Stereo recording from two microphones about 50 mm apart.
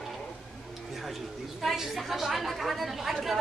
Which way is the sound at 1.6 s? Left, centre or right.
Centre.